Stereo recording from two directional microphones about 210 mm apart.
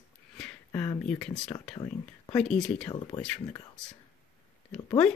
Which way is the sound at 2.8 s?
20° left (ahead or behind).